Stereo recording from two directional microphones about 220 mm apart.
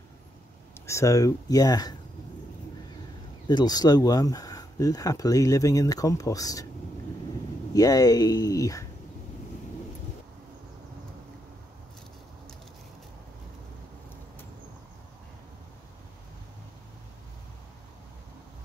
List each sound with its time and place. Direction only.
0.7 s speech: 15° left (ahead or behind)
3.4 s speech: 20° left (ahead or behind)
7.7 s speech: 15° left (ahead or behind)